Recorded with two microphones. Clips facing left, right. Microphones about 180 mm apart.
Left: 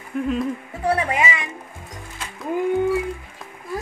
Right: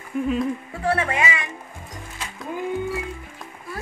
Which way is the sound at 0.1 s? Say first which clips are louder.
Even; centre (ahead or behind).